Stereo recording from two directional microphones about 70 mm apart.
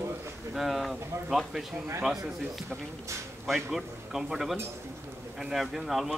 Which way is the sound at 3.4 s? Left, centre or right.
Centre.